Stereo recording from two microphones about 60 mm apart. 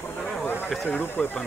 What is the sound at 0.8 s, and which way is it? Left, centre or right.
Speech, left.